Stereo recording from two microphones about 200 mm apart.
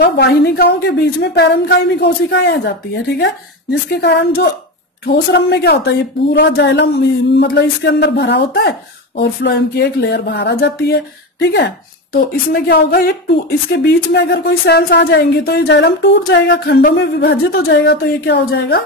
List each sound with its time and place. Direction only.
0.0 s a woman's voice: 50° left (ahead or behind)
3.9 s a woman's voice: 55° left (ahead or behind)
17.6 s a woman's voice: 65° left (ahead or behind)